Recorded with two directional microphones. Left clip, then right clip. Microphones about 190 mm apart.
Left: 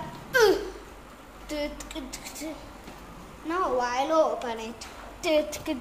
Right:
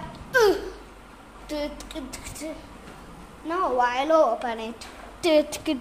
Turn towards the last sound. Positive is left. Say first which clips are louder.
# right 4 dB
turn(degrees=-30)  # may be behind; listen again after turning